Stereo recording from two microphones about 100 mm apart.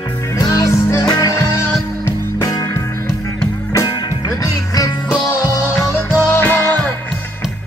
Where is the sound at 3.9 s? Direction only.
40° left (ahead or behind).